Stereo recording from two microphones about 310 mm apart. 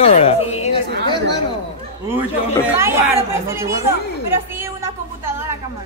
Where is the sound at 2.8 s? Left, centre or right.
Centre.